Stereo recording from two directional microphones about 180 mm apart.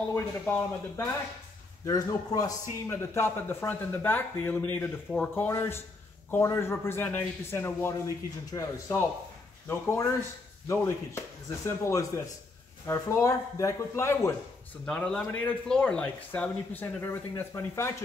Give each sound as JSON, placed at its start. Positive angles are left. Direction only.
{"t": 0.1, "sound": "a man's voice", "side_deg": 15}
{"t": 14.9, "sound": "a man's voice", "side_deg": 5}